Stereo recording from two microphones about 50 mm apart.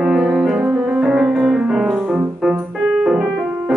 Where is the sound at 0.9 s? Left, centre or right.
Centre.